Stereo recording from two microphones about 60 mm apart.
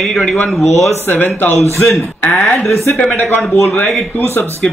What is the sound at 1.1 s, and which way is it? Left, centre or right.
Speech, left.